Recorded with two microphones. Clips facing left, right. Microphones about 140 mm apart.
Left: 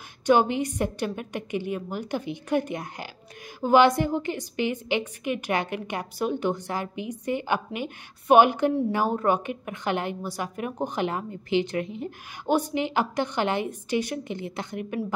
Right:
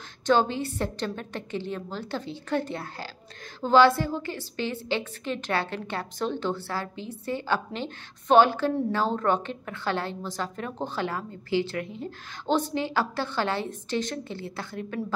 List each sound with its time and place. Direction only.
0.3 s a woman's voice: 15° left (ahead or behind)